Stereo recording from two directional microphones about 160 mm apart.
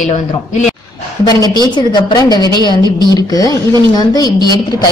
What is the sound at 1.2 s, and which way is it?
A woman's voice, 25° left (ahead or behind).